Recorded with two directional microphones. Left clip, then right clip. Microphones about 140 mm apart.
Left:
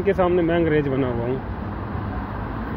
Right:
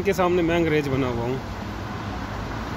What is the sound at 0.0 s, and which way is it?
Speech, 25° right (ahead or behind).